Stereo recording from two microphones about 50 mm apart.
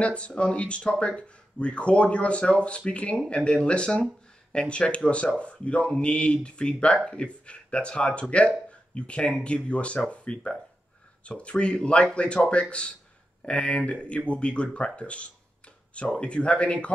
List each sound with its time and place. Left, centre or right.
0.0 s speech: left
15.0 s a sound: left
16.1 s speech: left